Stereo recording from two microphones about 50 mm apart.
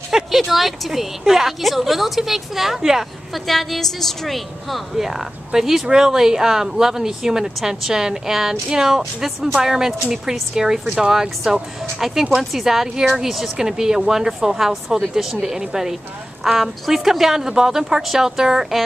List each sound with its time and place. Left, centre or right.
0.1 s a woman's voice: centre
3.4 s a woman's voice: centre